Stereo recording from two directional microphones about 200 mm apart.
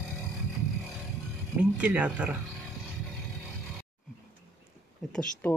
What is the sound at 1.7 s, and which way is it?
Speech, 5° right (ahead or behind).